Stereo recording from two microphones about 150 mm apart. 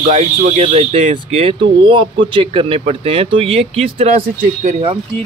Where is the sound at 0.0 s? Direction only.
50° right (ahead or behind).